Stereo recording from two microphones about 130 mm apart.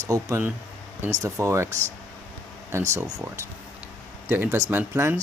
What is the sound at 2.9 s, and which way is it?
Speech, 20° right (ahead or behind).